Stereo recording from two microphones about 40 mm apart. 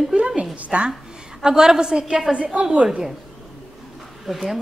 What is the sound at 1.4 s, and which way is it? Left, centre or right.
Speech, centre.